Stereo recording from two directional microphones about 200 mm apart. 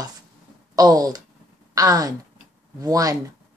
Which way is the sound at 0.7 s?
20° right (ahead or behind).